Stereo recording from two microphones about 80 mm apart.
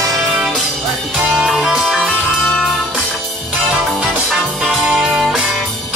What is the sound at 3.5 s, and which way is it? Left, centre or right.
Music, centre.